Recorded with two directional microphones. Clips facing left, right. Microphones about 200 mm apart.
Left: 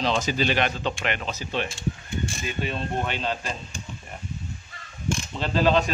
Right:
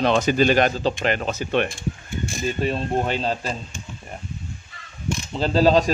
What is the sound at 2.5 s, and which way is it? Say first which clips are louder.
A man's voice: right 8 dB; 40° right (ahead or behind).